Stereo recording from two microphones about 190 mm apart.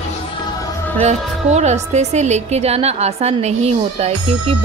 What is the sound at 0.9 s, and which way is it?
A woman's voice, 35° right (ahead or behind).